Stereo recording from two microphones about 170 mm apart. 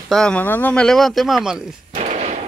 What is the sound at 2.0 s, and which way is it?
Gunshot, 40° right (ahead or behind).